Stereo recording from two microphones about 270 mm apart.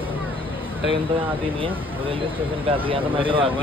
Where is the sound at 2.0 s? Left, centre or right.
Centre.